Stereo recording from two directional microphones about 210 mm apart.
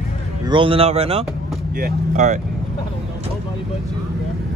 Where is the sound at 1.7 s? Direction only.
40° right (ahead or behind).